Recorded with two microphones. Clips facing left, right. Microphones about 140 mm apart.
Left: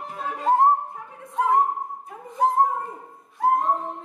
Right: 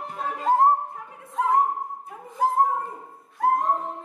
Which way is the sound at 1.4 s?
Centre (ahead or behind).